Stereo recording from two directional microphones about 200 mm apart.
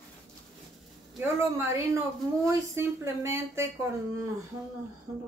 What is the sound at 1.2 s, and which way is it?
A woman's voice, 15° right (ahead or behind).